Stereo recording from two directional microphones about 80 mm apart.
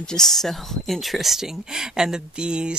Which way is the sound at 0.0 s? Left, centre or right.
Centre.